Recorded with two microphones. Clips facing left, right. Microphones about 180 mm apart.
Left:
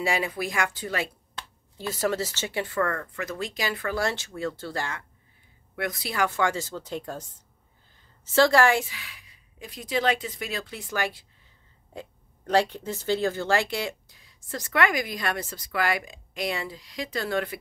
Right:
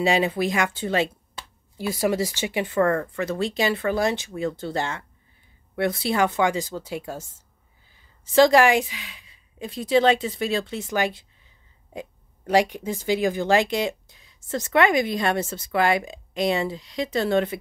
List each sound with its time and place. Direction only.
0.0 s speech: 25° right (ahead or behind)
1.3 s a woman's voice: 10° right (ahead or behind)